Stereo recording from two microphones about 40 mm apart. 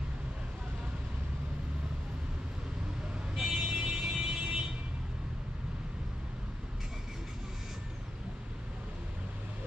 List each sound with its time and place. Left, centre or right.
3.3 s vehicle: centre